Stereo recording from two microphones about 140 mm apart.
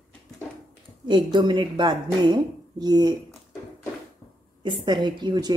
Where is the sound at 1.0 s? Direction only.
35° right (ahead or behind).